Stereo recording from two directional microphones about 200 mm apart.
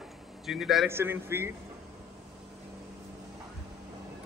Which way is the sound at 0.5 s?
Centre (ahead or behind).